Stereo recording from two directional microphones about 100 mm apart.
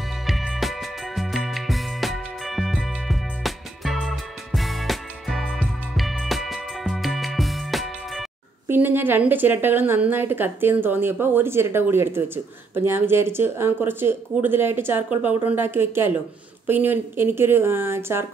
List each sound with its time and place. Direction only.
0.3 s music: centre (ahead or behind)
8.6 s a woman's voice: 20° right (ahead or behind)